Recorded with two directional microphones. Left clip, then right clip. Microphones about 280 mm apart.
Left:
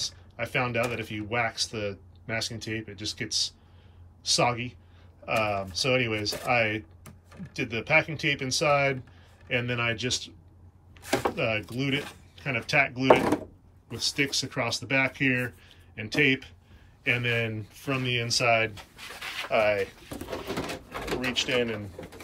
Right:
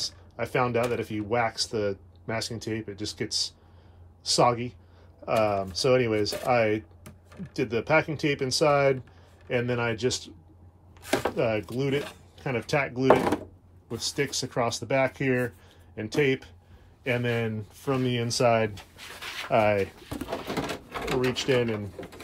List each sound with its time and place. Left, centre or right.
0.0 s speech: centre
4.4 s speech: right
5.7 s speech: centre
19.5 s speech: right
20.2 s a sound: centre
21.3 s speech: centre